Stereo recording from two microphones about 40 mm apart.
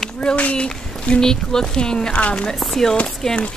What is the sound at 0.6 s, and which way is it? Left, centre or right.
Speech, centre.